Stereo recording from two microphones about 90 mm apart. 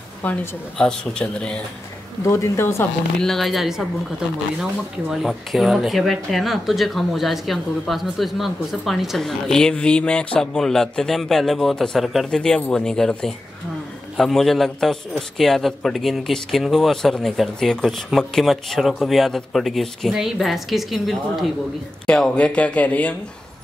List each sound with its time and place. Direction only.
0.2 s speech: 20° left (ahead or behind)
0.7 s speech: 10° left (ahead or behind)
2.2 s speech: 30° left (ahead or behind)
3.2 s speech: 5° left (ahead or behind)
12.4 s speech: 10° left (ahead or behind)